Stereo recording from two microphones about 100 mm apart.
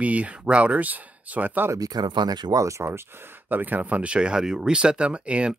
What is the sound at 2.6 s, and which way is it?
Speech, 30° right (ahead or behind).